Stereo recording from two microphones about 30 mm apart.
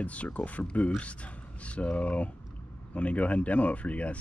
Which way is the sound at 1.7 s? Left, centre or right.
Left.